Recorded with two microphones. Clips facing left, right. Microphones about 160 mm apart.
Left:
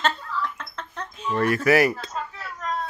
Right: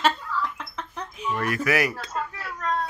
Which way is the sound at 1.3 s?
30° left (ahead or behind).